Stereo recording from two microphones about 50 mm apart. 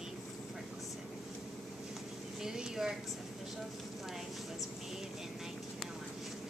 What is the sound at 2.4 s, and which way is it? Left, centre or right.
Speech, centre.